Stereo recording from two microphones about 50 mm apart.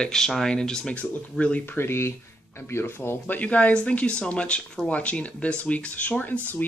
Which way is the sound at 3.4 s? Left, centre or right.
Left.